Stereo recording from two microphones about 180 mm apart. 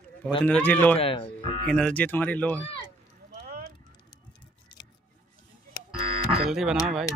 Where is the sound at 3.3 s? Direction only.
55° right (ahead or behind).